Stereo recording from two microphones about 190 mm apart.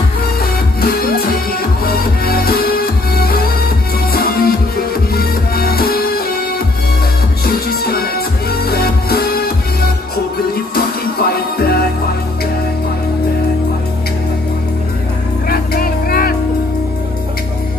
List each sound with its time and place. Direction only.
0.4 s music: 55° left (ahead or behind)
7.4 s music: 50° left (ahead or behind)
11.5 s music: 55° left (ahead or behind)
15.4 s music: 50° left (ahead or behind)